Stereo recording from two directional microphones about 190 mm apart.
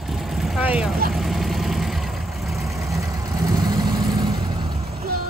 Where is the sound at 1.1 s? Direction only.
Centre (ahead or behind).